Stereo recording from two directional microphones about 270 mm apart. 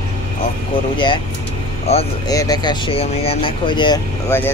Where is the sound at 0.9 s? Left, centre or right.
Centre.